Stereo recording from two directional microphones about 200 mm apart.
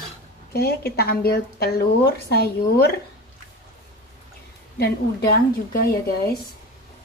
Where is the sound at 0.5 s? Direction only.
50° left (ahead or behind).